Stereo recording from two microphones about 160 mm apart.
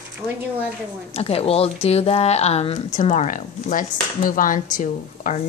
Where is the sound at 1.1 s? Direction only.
40° left (ahead or behind).